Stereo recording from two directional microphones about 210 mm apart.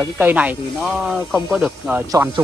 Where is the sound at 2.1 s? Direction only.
15° right (ahead or behind).